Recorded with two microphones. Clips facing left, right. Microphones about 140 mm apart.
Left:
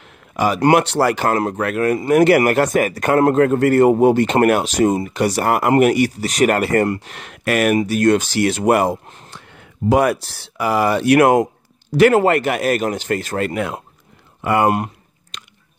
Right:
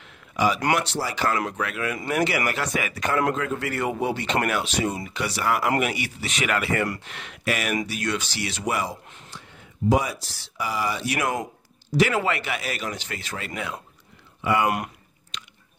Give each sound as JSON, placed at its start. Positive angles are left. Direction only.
{"t": 0.0, "sound": "a sound", "side_deg": 50}
{"t": 0.7, "sound": "a man's voice", "side_deg": 60}
{"t": 9.0, "sound": "speech", "side_deg": 40}
{"t": 9.3, "sound": "a man's voice", "side_deg": 60}